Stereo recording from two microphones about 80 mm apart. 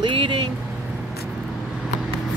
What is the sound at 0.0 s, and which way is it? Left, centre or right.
Vehicle, right.